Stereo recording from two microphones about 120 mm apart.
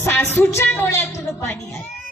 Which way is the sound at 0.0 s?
20° left (ahead or behind).